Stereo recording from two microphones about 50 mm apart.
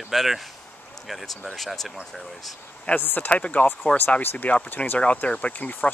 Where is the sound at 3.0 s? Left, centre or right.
Left.